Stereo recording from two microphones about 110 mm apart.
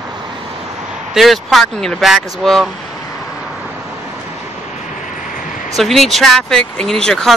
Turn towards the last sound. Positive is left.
turn(degrees=5)  # may be behind; listen again after turning